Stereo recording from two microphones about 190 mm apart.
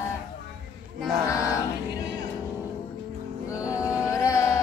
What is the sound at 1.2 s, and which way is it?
Chant, 15° left (ahead or behind).